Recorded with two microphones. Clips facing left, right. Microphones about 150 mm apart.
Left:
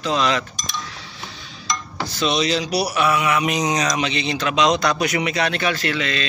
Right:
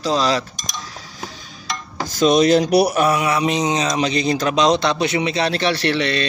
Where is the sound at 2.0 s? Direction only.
45° right (ahead or behind).